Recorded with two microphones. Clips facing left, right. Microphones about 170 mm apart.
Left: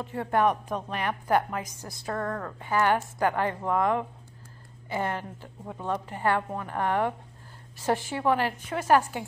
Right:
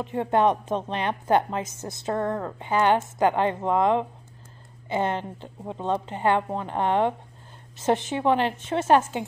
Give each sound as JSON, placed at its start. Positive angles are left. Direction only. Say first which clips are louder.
{"t": 0.0, "sound": "a woman's voice", "louder": "right 3 dB", "side_deg": -20}